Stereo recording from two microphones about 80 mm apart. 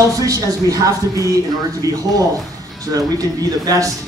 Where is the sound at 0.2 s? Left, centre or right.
Right.